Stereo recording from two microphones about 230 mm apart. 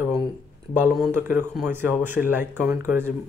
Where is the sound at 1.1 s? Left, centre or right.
Centre.